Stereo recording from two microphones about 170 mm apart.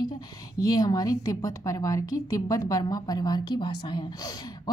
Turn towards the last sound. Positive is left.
turn(degrees=25)  # may be behind; listen again after turning